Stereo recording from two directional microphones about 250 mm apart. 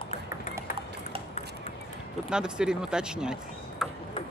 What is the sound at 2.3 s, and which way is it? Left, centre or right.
Speech, centre.